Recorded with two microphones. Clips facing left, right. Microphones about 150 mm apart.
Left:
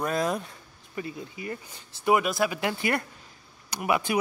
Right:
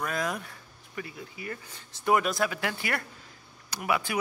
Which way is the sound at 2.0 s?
10° left (ahead or behind).